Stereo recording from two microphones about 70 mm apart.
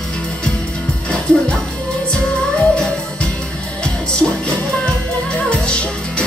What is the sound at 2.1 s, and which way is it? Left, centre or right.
Music, centre.